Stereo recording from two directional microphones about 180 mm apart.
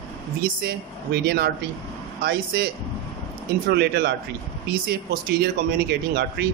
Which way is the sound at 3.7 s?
65° right (ahead or behind).